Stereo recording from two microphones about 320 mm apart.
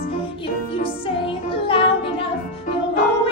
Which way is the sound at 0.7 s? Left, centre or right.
Centre.